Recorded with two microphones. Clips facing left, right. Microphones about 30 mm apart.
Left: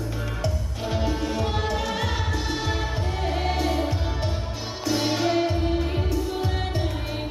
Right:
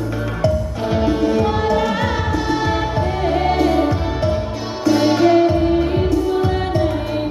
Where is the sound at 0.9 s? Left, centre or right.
Right.